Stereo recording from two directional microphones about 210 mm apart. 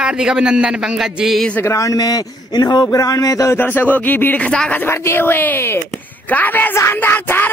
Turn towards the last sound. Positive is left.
turn(degrees=10)  # may be behind; listen again after turning